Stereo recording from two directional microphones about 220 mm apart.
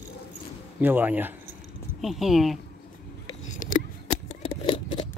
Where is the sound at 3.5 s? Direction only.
35° left (ahead or behind).